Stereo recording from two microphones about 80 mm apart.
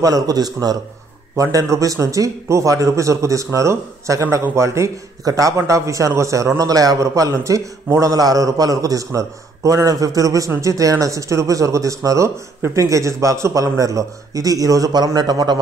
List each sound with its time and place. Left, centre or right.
0.0 s a man's voice: right